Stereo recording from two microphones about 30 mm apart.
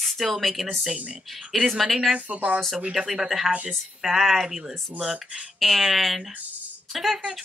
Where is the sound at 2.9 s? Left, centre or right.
Centre.